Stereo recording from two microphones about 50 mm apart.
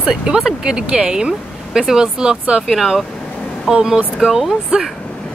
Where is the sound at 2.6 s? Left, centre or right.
Centre.